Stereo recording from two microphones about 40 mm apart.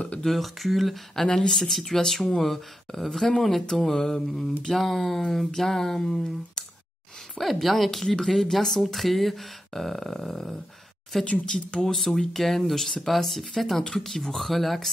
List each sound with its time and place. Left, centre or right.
0.2 s speech: centre
1.1 s speech: centre
7.6 s speech: centre
11.2 s speech: left
11.9 s speech: centre